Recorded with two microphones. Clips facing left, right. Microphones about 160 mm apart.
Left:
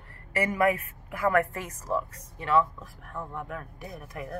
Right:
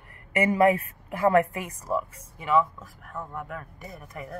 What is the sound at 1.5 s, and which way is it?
A woman's voice, 10° right (ahead or behind).